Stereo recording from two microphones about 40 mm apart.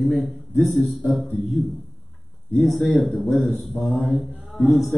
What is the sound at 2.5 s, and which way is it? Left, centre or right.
Speech, centre.